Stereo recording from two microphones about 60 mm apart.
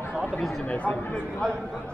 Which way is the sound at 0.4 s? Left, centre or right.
Centre.